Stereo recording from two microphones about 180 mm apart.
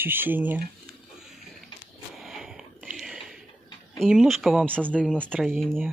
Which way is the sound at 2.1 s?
Centre (ahead or behind).